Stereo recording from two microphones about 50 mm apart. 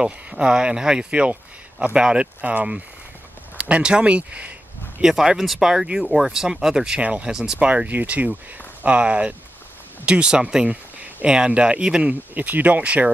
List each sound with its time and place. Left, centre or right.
0.0 s speech: centre
2.4 s speech: right
5.0 s speech: centre
7.0 s speech: right
7.2 s speech: centre
7.5 s speech: right
12.1 s speech: right